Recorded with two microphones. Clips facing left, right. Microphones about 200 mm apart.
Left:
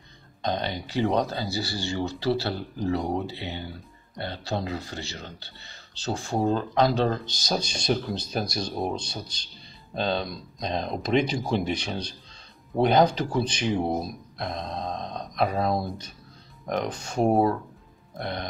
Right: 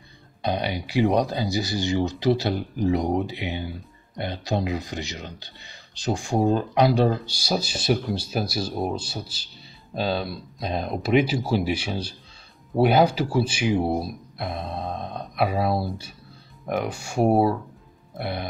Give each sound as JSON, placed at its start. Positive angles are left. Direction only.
{"t": 0.4, "sound": "speech", "side_deg": -10}
{"t": 18.1, "sound": "music", "side_deg": -5}